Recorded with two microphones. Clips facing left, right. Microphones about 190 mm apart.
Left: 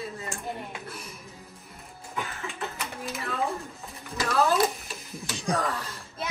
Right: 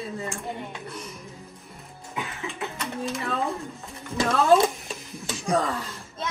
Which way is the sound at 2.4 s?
Centre (ahead or behind).